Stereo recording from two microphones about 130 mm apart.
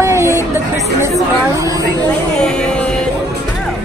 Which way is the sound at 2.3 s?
5° left (ahead or behind).